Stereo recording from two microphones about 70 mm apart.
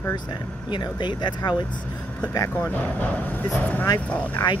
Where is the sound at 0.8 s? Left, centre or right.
Left.